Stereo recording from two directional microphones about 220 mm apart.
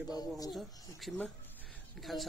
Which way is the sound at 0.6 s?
5° left (ahead or behind).